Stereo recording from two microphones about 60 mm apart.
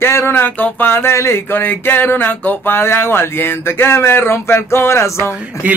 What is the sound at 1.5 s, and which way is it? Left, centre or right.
Speech, left.